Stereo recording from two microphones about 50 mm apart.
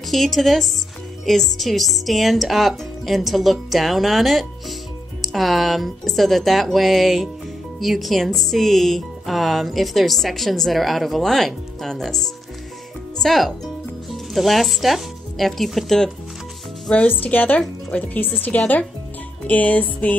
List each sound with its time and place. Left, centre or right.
0.1 s speech: centre
16.9 s music: left